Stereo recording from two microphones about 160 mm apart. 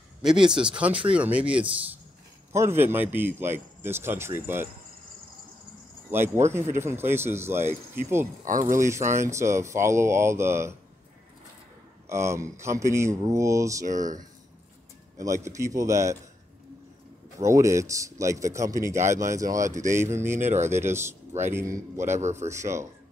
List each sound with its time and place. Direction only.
0.2 s speech: 5° right (ahead or behind)
6.1 s speech: 15° right (ahead or behind)
8.5 s speech: 55° right (ahead or behind)
8.7 s speech: 20° right (ahead or behind)
12.1 s speech: 15° right (ahead or behind)
13.8 s speech: 50° right (ahead or behind)
15.1 s speech: 20° right (ahead or behind)
17.4 s speech: 20° right (ahead or behind)
20.3 s speech: 45° right (ahead or behind)
20.7 s speech: 15° right (ahead or behind)
22.2 s speech: 45° right (ahead or behind)
22.5 s speech: 15° right (ahead or behind)